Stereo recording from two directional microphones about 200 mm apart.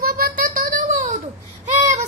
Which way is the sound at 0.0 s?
50° right (ahead or behind).